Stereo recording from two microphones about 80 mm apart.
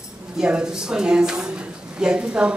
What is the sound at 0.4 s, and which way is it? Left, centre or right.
A man's voice, centre.